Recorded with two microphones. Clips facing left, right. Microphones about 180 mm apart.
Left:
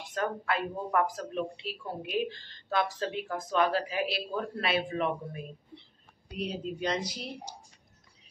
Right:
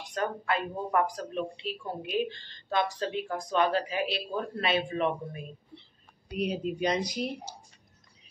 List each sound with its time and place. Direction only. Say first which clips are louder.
0.1 s speech: right 1 dB; centre (ahead or behind)
6.3 s speech: right 4 dB; 15° right (ahead or behind)
7.5 s a sound: right 1 dB; 15° left (ahead or behind)